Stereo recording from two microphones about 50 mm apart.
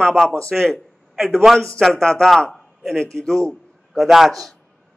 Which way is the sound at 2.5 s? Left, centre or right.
Centre.